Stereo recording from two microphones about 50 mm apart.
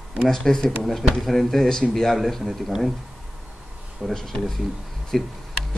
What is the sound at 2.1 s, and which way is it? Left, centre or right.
Speech, centre.